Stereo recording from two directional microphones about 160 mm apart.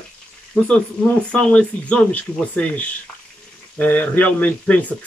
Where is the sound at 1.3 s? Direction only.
5° left (ahead or behind).